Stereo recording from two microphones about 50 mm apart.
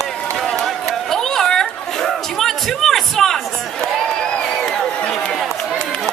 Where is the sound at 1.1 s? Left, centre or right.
Centre.